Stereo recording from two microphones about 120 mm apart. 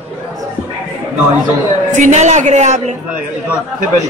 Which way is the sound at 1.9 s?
85° right.